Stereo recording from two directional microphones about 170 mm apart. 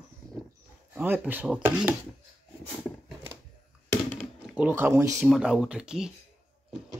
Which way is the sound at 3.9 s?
10° left (ahead or behind).